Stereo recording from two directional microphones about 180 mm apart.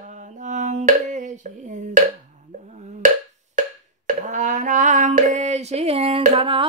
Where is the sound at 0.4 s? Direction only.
45° right (ahead or behind).